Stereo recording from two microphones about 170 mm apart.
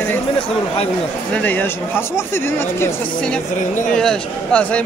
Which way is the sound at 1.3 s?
10° left (ahead or behind).